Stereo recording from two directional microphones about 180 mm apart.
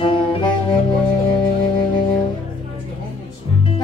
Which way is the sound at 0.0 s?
30° left (ahead or behind).